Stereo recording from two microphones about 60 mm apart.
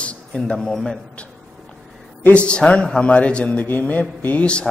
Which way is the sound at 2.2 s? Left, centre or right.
Centre.